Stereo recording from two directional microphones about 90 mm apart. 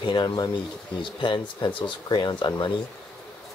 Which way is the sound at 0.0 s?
55° left (ahead or behind).